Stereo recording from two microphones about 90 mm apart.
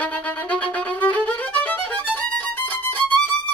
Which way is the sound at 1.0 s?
15° left (ahead or behind).